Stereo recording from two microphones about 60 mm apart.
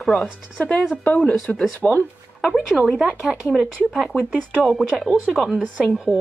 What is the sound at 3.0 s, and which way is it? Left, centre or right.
Speech, centre.